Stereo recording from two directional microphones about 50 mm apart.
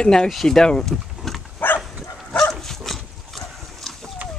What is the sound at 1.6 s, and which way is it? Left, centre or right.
Dog, left.